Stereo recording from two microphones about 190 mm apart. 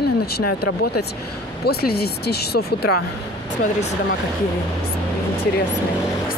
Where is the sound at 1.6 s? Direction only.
55° left (ahead or behind).